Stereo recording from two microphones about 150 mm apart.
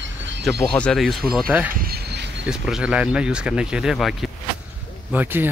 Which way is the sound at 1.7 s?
85° right.